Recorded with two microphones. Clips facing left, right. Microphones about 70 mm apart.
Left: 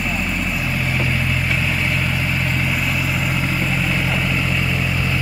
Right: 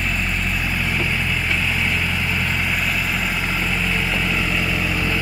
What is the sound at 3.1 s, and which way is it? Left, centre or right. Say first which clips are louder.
Vehicle: left 1 dB; centre.